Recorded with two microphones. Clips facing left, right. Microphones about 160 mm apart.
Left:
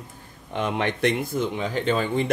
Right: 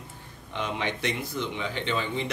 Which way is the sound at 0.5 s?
50° left (ahead or behind).